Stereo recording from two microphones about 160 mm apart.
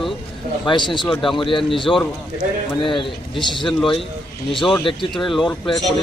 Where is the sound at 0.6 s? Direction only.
30° left (ahead or behind).